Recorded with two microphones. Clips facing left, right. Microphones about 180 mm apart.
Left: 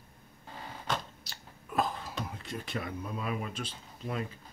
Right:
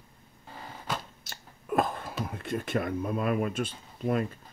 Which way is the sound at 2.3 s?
55° right (ahead or behind).